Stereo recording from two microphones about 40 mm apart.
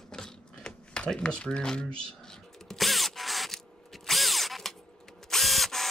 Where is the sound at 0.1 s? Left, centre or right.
Centre.